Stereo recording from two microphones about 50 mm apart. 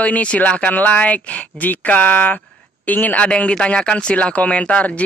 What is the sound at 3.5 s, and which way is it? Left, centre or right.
Speech, centre.